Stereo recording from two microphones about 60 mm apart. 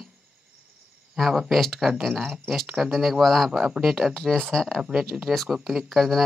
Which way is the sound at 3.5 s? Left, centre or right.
Centre.